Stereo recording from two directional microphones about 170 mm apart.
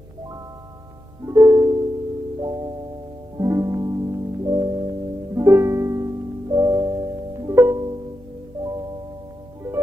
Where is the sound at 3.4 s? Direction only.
20° right (ahead or behind).